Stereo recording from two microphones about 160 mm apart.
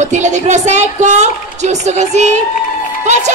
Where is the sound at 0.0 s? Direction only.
50° right (ahead or behind).